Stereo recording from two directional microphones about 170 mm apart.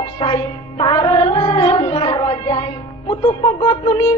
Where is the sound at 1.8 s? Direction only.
30° left (ahead or behind).